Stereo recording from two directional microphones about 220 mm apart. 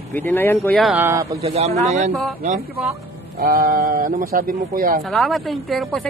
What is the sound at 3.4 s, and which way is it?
Speech, 40° right (ahead or behind).